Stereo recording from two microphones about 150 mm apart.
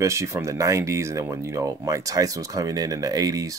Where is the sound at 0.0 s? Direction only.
20° right (ahead or behind).